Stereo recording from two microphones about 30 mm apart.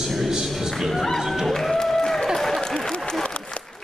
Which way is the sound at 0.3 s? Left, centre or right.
Centre.